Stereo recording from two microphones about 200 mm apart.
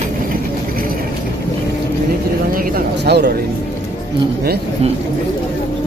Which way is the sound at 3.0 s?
55° right (ahead or behind).